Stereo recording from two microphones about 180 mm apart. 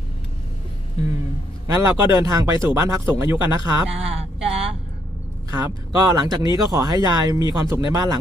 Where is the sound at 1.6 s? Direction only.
20° right (ahead or behind).